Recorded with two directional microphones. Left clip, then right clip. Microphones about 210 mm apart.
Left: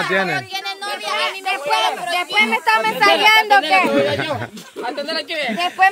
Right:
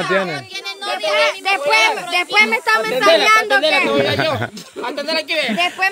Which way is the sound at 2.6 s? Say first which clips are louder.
Even; 10° left (ahead or behind).